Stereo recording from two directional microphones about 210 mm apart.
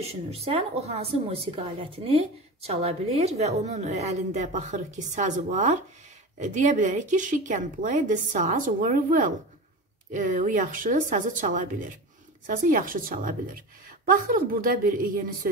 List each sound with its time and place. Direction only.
0.3 s a woman's voice: 30° right (ahead or behind)